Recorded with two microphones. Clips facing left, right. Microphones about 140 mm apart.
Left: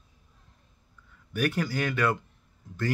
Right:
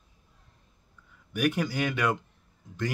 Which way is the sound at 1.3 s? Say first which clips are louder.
Right 1 dB; 15° right (ahead or behind).